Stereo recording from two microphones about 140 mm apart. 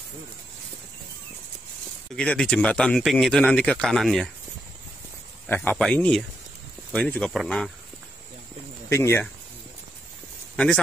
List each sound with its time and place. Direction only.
2.1 s speech: 5° left (ahead or behind)
5.5 s speech: 10° left (ahead or behind)
8.8 s speech: 20° left (ahead or behind)
10.5 s a sound: 5° left (ahead or behind)